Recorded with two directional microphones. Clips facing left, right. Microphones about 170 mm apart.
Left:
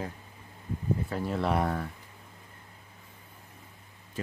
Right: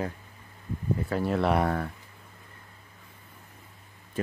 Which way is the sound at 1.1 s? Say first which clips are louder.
Right 5 dB; 65° right (ahead or behind).